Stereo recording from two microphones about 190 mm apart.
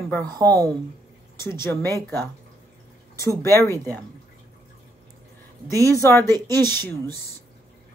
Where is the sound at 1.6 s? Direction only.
15° left (ahead or behind).